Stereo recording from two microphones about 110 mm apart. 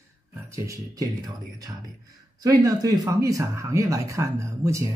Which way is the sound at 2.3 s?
35° right (ahead or behind).